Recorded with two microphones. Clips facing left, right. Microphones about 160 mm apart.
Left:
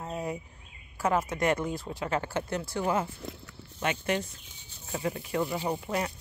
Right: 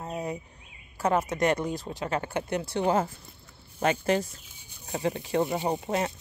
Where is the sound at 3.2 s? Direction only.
85° left.